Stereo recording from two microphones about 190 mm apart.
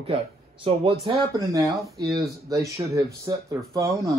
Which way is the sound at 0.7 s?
30° right (ahead or behind).